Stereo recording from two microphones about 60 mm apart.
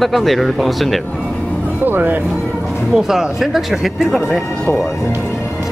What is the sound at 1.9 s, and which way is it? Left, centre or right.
Speech, right.